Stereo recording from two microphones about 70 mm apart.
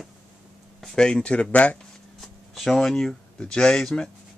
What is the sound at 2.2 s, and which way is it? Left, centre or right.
Speech, centre.